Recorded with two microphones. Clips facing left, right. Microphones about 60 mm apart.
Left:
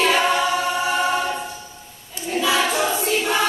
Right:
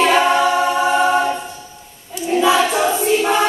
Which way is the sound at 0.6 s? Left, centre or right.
Right.